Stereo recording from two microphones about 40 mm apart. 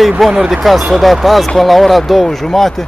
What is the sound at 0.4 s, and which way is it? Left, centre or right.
Speech, centre.